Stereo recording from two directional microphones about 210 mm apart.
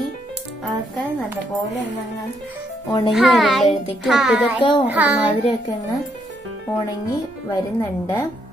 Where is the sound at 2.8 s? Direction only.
15° left (ahead or behind).